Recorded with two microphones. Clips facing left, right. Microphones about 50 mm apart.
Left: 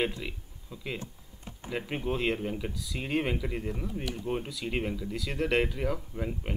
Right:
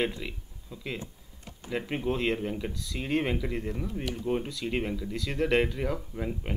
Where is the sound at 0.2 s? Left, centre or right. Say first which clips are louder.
Even; centre.